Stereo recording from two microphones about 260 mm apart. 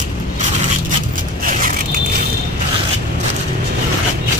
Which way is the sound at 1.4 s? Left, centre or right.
Right.